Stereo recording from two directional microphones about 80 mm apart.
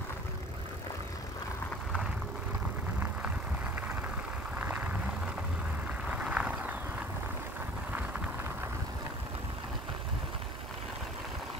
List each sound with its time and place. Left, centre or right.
4.6 s vehicle: centre
6.0 s vehicle: centre